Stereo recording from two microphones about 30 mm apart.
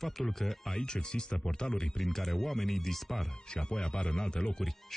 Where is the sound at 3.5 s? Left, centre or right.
Left.